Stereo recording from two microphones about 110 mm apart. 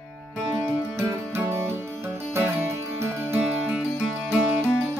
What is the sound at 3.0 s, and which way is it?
Music, 20° right (ahead or behind).